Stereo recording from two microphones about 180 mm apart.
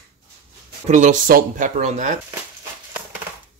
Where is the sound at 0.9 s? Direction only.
45° right (ahead or behind).